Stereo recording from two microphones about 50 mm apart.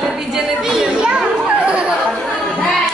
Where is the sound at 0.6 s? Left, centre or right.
Centre.